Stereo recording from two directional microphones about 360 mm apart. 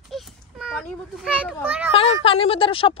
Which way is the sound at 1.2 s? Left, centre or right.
Centre.